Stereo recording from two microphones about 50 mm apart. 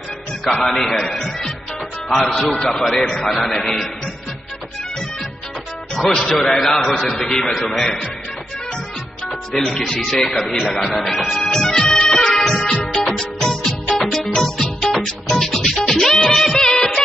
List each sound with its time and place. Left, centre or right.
0.5 s a man's voice: centre
3.0 s speech: centre
3.4 s speech: centre
5.9 s a man's voice: centre
9.7 s a man's voice: centre
11.3 s music: centre
12.6 s music: left
13.2 s music: centre
16.3 s music of bollywood: centre